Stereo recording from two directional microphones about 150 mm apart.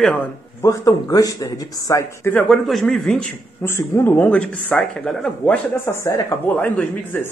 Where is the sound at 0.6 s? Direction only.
20° left (ahead or behind).